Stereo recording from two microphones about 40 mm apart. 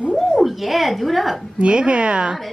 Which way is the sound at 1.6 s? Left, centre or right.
Right.